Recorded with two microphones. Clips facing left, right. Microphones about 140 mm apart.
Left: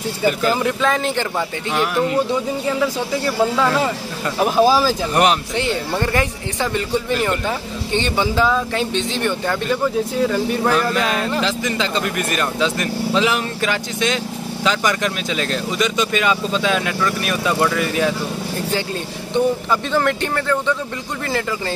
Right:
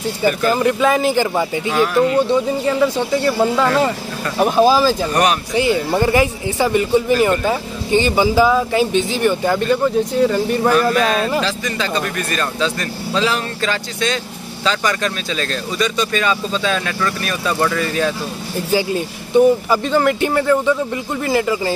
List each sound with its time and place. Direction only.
0.2 s speech: 10° left (ahead or behind)
0.7 s speech: 10° right (ahead or behind); by 5.2 s 5° left (ahead or behind)
5.5 s speech: 5° right (ahead or behind)
11.4 s speech: 20° left (ahead or behind)
19.3 s speech: 5° right (ahead or behind)